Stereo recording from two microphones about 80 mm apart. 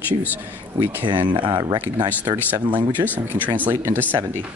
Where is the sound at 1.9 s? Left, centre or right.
Right.